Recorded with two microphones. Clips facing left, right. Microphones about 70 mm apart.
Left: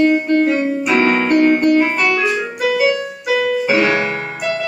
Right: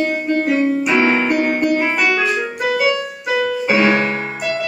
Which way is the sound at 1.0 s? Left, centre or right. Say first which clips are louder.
Left 3 dB; centre.